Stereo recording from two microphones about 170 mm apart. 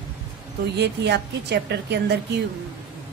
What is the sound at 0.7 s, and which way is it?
A woman's voice, 80° right.